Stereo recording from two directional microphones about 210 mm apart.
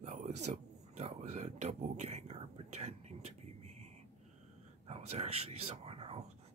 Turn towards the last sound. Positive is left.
turn(degrees=-30)  # may be behind; listen again after turning